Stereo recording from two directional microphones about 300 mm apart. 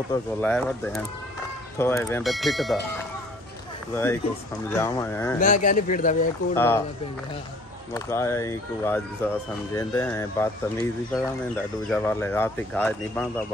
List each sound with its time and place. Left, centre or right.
0.1 s speech: centre
3.9 s speech: centre
5.4 s speech: left
6.5 s speech: centre
7.9 s speech: centre